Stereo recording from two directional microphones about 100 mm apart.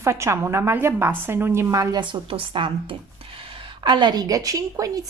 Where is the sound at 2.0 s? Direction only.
60° right (ahead or behind); by 5.0 s 35° right (ahead or behind).